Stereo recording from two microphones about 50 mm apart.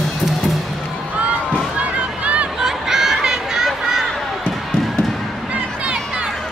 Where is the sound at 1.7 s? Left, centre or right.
Right.